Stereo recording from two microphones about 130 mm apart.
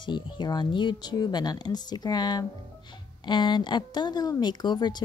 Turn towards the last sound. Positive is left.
turn(degrees=35)  # may be behind; listen again after turning